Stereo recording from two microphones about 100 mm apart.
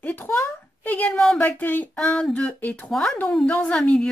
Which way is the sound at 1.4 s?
20° left (ahead or behind).